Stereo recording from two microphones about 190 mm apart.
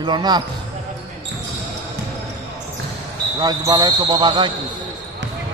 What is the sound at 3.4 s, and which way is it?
Speech, 20° right (ahead or behind).